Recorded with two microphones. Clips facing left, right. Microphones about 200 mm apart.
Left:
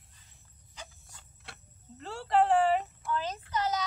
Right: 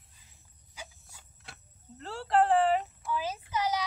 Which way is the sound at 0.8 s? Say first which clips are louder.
Right 1 dB; 10° right (ahead or behind).